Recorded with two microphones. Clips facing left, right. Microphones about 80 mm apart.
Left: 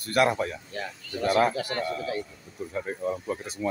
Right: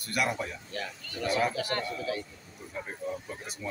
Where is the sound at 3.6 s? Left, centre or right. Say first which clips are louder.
Left 8 dB; left.